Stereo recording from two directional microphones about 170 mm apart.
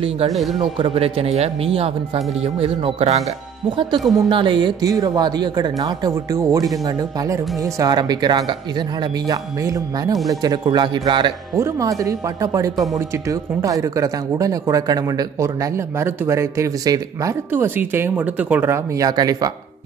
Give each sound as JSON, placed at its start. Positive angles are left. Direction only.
{"t": 0.3, "sound": "speech", "side_deg": 0}
{"t": 0.6, "sound": "speech", "side_deg": -35}
{"t": 7.8, "sound": "speech", "side_deg": -25}
{"t": 11.5, "sound": "speech", "side_deg": -20}